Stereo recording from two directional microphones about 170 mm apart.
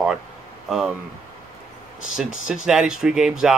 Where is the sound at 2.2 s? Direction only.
5° right (ahead or behind).